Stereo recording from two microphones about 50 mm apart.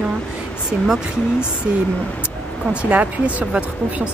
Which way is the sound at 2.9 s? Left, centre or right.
Right.